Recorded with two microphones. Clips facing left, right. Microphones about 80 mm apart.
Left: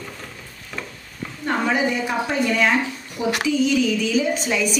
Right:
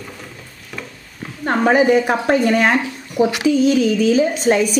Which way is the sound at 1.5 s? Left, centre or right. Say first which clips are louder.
Right 8 dB; right.